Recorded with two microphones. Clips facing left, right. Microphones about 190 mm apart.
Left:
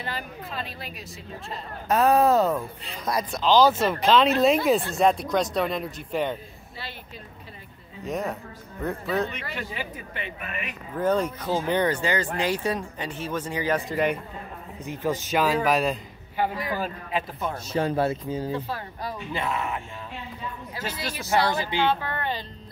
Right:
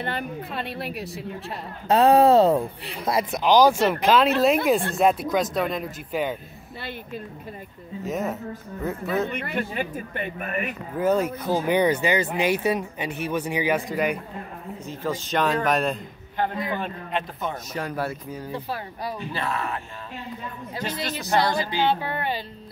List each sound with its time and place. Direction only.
0.0 s a woman's voice: 60° right (ahead or behind)
1.9 s a man's voice: 30° right (ahead or behind); by 6.3 s centre (ahead or behind)
8.0 s a man's voice: 5° right (ahead or behind)
9.3 s speech: 55° right (ahead or behind)
11.0 s a man's voice: 10° right (ahead or behind)
14.9 s a man's voice: 10° left (ahead or behind)
17.7 s speech: 25° left (ahead or behind)
18.5 s speech: 10° right (ahead or behind)
19.3 s speech: 20° left (ahead or behind)
20.8 s speech: 10° left (ahead or behind)
21.7 s speech: 15° right (ahead or behind)